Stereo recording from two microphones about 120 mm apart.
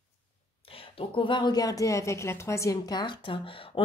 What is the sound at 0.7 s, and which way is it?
A woman's voice, 50° left (ahead or behind).